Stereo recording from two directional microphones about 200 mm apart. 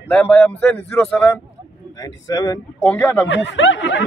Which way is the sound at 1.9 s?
20° left (ahead or behind).